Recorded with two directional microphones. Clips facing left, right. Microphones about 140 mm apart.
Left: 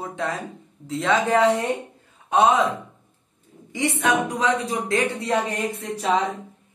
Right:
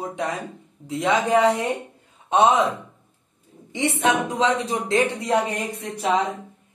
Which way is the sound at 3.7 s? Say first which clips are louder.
Right 1 dB; 25° right (ahead or behind).